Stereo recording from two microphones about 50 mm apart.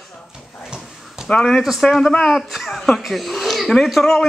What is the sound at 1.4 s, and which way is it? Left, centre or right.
A man's voice, centre.